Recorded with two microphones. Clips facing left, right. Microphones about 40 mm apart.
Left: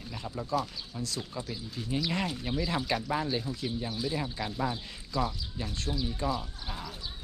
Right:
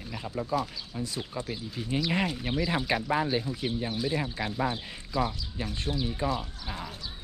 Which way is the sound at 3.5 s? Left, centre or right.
Right.